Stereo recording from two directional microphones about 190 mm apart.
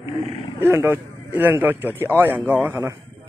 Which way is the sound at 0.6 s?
15° right (ahead or behind).